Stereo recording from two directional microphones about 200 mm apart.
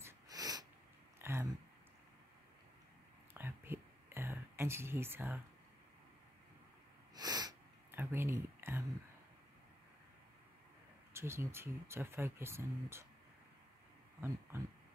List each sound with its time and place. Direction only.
0.0 s sniff: 20° right (ahead or behind)
1.2 s a sound: 10° right (ahead or behind)
3.3 s whispering: 10° right (ahead or behind)
7.2 s sniff: 20° right (ahead or behind)
11.1 s speech: 15° right (ahead or behind)